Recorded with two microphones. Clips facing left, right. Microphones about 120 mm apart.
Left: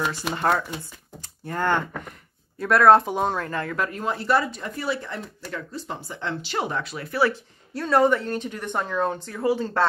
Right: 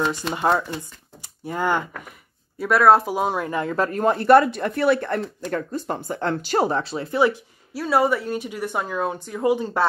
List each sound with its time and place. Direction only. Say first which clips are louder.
0.3 s a woman's voice: right 1 dB; 15° right (ahead or behind)
1.2 s a sound: right 1 dB; 10° right (ahead or behind)
2.6 s speech: even; 5° right (ahead or behind)
3.9 s speech: right 10 dB; 55° right (ahead or behind)
5.4 s speech: right 7 dB; 50° right (ahead or behind); by 7.3 s 20° right (ahead or behind)
7.7 s a woman's voice: even; 5° right (ahead or behind)